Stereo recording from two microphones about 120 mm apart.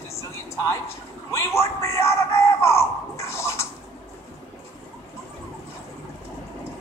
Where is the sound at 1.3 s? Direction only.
25° left (ahead or behind).